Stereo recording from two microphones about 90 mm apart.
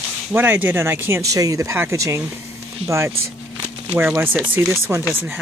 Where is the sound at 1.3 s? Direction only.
40° right (ahead or behind).